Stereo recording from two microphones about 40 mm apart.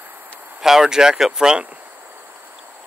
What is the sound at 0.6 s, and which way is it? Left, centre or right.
Speech, centre.